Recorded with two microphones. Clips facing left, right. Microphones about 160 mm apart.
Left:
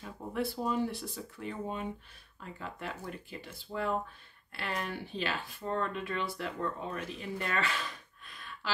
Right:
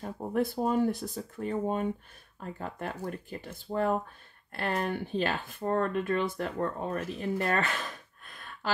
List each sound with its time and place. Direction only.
0.0 s speech: 45° right (ahead or behind)